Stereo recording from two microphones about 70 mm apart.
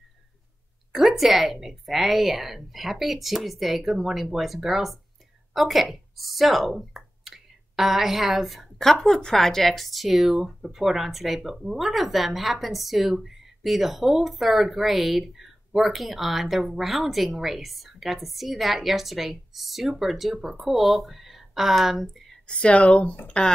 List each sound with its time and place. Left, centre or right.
0.9 s speech: centre
22.5 s speech: centre